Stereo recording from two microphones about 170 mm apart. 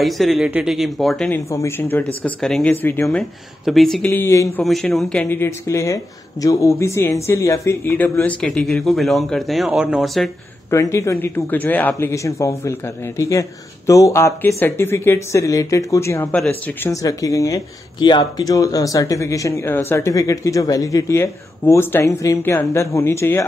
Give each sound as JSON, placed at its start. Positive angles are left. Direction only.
{"t": 0.0, "sound": "speech", "side_deg": 0}
{"t": 1.5, "sound": "speech", "side_deg": 15}
{"t": 4.6, "sound": "speech", "side_deg": 0}
{"t": 10.7, "sound": "speech", "side_deg": 15}